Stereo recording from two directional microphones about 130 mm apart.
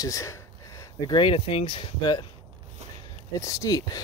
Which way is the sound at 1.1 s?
40° left (ahead or behind).